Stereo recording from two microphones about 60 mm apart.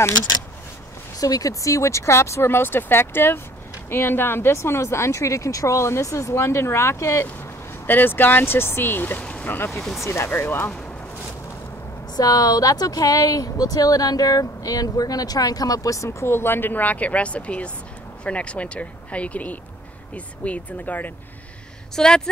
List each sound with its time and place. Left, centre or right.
1.2 s speech: left
7.8 s speech: left
9.2 s a sound: centre
9.7 s speech: centre
10.0 s speech: left
10.4 s speech: left
12.2 s speech: left
21.9 s speech: centre